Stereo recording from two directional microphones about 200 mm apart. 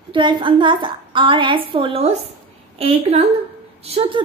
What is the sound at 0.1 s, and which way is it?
A woman's voice, 25° right (ahead or behind).